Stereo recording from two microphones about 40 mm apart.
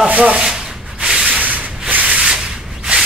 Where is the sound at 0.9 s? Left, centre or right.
Right.